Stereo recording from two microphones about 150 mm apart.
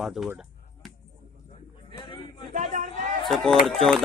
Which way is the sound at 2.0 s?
30° left (ahead or behind).